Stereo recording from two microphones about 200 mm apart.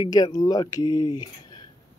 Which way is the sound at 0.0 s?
20° left (ahead or behind).